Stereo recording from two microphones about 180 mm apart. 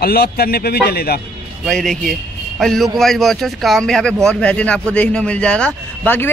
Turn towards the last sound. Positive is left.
turn(degrees=10)  # may be behind; listen again after turning